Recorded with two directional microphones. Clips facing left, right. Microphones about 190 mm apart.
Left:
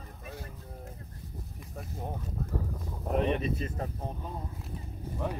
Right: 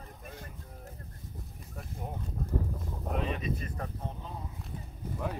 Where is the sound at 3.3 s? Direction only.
30° left (ahead or behind).